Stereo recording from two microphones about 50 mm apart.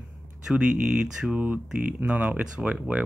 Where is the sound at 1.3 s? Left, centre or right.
Right.